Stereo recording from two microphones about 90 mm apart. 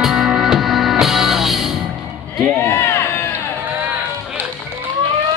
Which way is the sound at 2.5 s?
25° left (ahead or behind).